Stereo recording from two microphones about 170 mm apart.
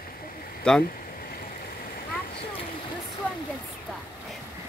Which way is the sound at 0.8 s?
55° left (ahead or behind).